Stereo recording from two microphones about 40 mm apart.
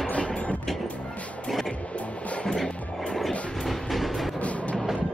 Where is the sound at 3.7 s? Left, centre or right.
Centre.